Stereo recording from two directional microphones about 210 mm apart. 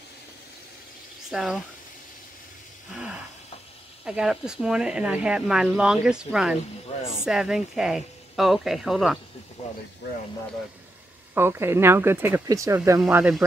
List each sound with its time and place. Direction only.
1.3 s speech: centre (ahead or behind)
4.0 s speech: 5° right (ahead or behind)
6.9 s a sound: 25° left (ahead or behind)
7.2 s speech: centre (ahead or behind)
11.3 s speech: 10° right (ahead or behind)
13.0 s speech: 5° right (ahead or behind)